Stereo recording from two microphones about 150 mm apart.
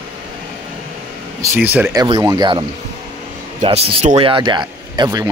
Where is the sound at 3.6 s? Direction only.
40° right (ahead or behind).